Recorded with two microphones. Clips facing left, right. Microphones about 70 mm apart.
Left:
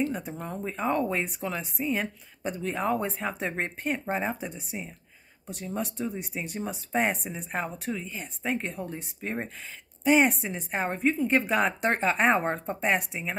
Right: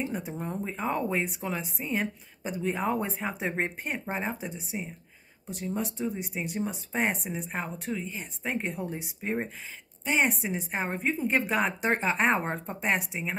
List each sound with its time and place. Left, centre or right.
0.0 s speech: centre